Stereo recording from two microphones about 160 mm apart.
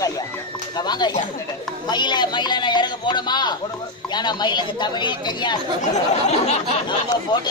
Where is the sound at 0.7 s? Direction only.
25° left (ahead or behind).